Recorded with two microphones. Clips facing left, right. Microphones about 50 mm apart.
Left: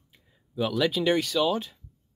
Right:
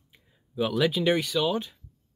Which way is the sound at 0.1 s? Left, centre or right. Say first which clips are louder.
Left 1 dB; centre.